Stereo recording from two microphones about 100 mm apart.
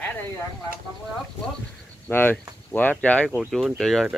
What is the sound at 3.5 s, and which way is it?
Speech, 5° left (ahead or behind).